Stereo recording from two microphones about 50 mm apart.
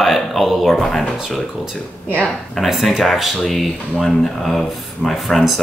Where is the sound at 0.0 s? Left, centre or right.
Centre.